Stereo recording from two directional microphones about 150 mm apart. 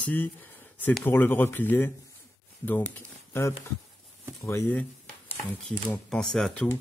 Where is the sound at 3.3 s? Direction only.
15° left (ahead or behind).